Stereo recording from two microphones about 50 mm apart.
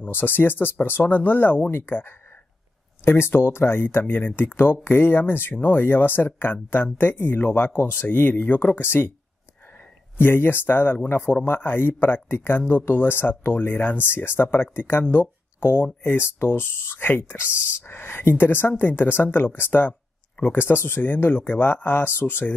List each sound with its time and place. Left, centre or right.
0.1 s a man's voice: left
10.1 s a man's voice: left